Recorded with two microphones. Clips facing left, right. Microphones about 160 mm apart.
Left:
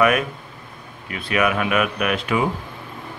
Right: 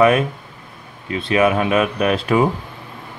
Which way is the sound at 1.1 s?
30° right (ahead or behind).